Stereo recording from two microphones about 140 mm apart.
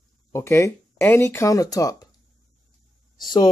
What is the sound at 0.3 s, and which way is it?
Speech, 20° left (ahead or behind).